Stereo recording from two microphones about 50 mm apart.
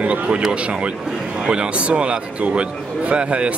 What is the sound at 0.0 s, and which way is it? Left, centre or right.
Speech, right.